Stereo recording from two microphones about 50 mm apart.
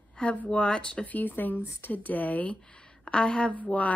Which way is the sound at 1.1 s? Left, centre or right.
Left.